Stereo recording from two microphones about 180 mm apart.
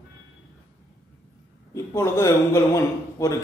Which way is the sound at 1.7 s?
15° left (ahead or behind).